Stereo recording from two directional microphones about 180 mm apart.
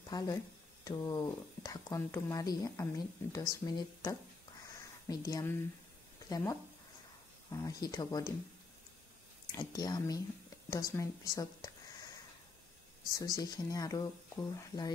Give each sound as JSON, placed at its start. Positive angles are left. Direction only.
{"t": 0.1, "sound": "speech", "side_deg": 20}
{"t": 4.7, "sound": "a sound", "side_deg": 20}
{"t": 6.2, "sound": "speech", "side_deg": 20}
{"t": 9.6, "sound": "speech", "side_deg": 20}
{"t": 13.1, "sound": "speech", "side_deg": 20}